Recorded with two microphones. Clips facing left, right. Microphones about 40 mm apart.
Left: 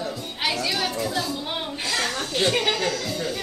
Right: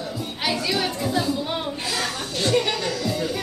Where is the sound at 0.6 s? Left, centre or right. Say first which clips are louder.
Right 1 dB; centre.